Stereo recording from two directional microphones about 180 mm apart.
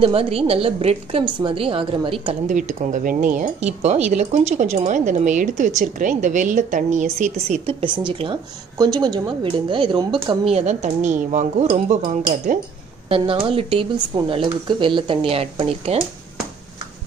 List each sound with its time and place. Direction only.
0.0 s a woman's voice: 30° right (ahead or behind)
2.4 s a woman's voice: 45° right (ahead or behind)
13.1 s speech: 30° right (ahead or behind)